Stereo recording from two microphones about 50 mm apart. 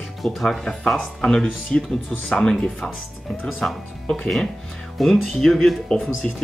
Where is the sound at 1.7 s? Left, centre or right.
Left.